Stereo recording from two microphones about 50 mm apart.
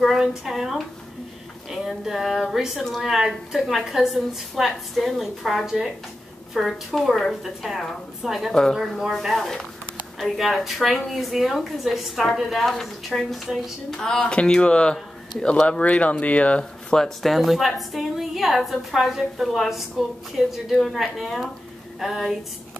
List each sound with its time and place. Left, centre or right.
0.0 s a woman's voice: centre; by 16.6 s left
16.9 s a woman's voice: centre
17.3 s a woman's voice: centre
20.4 s speech: centre
20.7 s a woman's voice: centre